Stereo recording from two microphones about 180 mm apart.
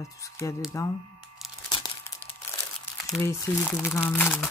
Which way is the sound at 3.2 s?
15° left (ahead or behind).